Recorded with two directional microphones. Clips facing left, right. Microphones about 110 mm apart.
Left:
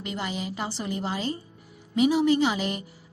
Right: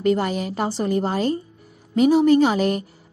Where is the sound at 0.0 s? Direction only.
45° right (ahead or behind).